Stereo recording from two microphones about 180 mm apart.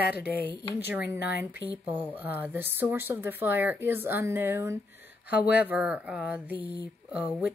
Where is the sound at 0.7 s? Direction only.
10° right (ahead or behind).